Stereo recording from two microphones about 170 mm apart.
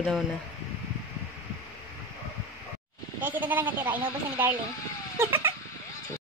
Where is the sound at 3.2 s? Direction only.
10° right (ahead or behind).